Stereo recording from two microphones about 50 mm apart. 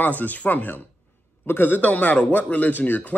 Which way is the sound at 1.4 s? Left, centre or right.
Left.